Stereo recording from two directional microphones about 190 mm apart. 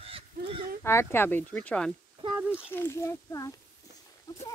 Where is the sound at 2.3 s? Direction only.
5° right (ahead or behind).